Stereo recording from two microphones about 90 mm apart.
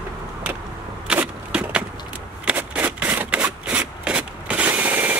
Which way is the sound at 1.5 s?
10° right (ahead or behind).